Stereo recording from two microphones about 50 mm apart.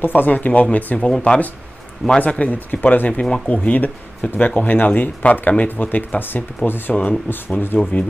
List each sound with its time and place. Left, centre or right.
0.0 s speech: left
0.9 s speech: centre
2.1 s speech: left